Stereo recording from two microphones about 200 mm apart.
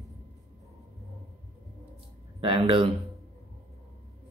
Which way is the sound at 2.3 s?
25° right (ahead or behind).